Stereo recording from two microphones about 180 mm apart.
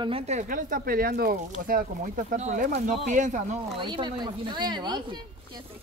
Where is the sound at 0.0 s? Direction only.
35° right (ahead or behind).